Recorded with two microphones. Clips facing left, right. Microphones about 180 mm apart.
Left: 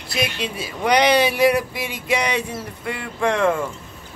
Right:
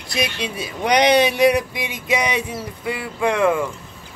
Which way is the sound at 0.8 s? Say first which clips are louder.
Right 1 dB; 20° right (ahead or behind).